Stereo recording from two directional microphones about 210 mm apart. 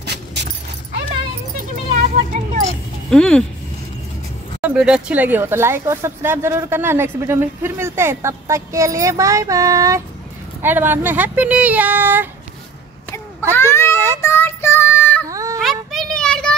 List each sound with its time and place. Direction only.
0.0 s dog: 55° right (ahead or behind)
2.0 s vehicle: 35° right (ahead or behind)
3.1 s speech: 5° left (ahead or behind)
4.6 s speech: 5° right (ahead or behind)
13.6 s speech: 10° left (ahead or behind)
14.2 s child singing: 10° left (ahead or behind)
15.2 s a sound: 15° right (ahead or behind)
15.6 s child singing: centre (ahead or behind)